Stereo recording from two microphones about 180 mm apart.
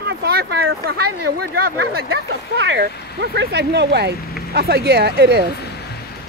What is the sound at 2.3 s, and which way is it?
Speech, 90° right.